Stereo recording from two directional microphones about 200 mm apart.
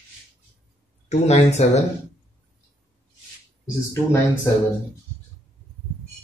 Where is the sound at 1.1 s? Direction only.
35° left (ahead or behind).